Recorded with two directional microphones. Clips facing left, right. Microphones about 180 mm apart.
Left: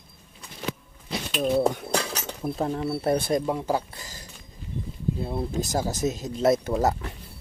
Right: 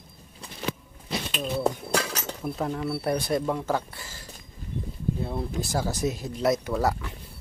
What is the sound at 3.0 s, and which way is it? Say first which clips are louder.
Speech: left 3 dB; 25° left (ahead or behind).